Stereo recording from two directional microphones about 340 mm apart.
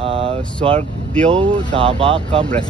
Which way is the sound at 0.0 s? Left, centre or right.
Centre.